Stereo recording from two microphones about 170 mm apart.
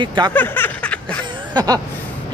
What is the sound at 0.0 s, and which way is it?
Speech, 25° right (ahead or behind).